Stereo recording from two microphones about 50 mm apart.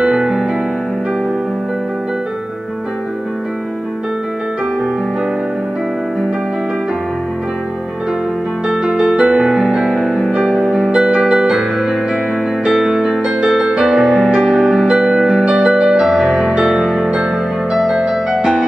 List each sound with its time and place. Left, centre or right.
0.0 s music: centre
8.6 s music: centre
12.6 s music: centre
17.9 s music: centre